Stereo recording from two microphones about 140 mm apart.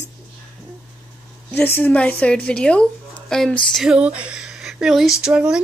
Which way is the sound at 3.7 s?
5° right (ahead or behind).